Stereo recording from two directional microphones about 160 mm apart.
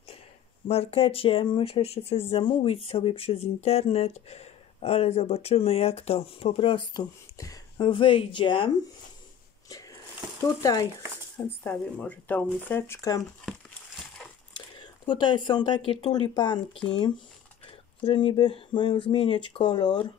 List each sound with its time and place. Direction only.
0.7 s speech: 40° left (ahead or behind)
10.4 s speech: 20° left (ahead or behind)
11.3 s speech: 10° left (ahead or behind)
14.5 s speech: 30° left (ahead or behind)